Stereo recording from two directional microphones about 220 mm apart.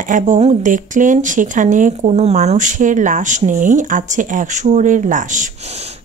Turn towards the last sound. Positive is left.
turn(degrees=-30)  # may be behind; listen again after turning